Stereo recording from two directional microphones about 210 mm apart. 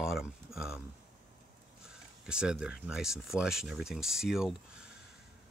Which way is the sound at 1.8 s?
5° right (ahead or behind).